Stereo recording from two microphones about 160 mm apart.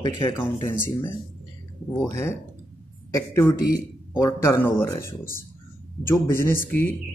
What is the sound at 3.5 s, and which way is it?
Speech, 65° left (ahead or behind).